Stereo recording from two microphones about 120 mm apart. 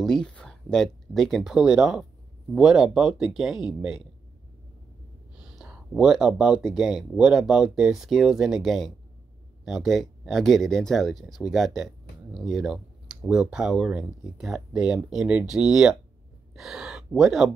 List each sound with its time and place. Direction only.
0.0 s speech: 5° left (ahead or behind)
5.6 s speech: 5° right (ahead or behind)